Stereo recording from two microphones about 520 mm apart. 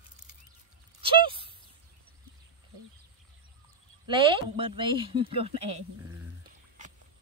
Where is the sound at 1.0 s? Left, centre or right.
Centre.